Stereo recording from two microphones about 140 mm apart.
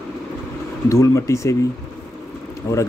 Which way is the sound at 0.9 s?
20° left (ahead or behind).